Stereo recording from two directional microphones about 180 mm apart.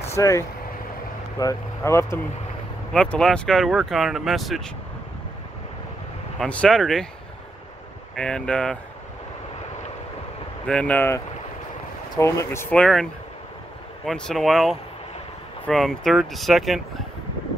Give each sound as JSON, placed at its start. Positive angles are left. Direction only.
{"t": 0.1, "sound": "speech", "side_deg": 15}
{"t": 2.9, "sound": "speech", "side_deg": 5}
{"t": 6.4, "sound": "speech", "side_deg": 5}
{"t": 8.2, "sound": "speech", "side_deg": 5}
{"t": 10.7, "sound": "speech", "side_deg": 5}